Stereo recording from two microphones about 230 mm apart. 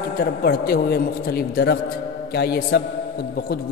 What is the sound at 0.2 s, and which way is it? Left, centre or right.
A man's voice, left.